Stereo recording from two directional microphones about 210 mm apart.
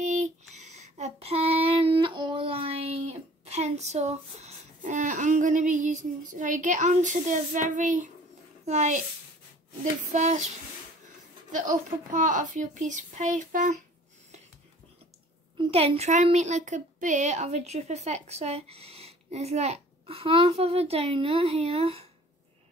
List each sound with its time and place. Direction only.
0.0 s a sound: 35° right (ahead or behind)
0.7 s child singing: 35° right (ahead or behind)
8.6 s speech: 35° right (ahead or behind)
10.1 s speech: 35° right (ahead or behind)
11.5 s speech: 35° right (ahead or behind)
15.5 s a woman's voice: 30° right (ahead or behind)